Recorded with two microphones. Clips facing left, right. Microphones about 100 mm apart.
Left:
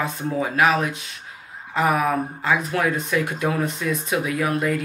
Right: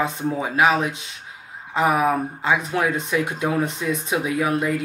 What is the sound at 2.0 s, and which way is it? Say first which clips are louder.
Speech: right 2 dB; 20° right (ahead or behind).